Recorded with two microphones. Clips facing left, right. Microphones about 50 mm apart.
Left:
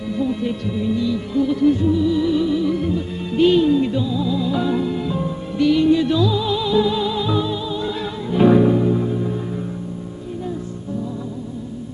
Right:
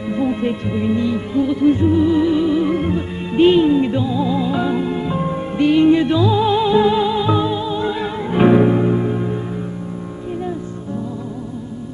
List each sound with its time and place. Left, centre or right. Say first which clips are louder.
0.1 s speech: right 3 dB; right
1.3 s music: right 1 dB; right
3.3 s music: right 2 dB; right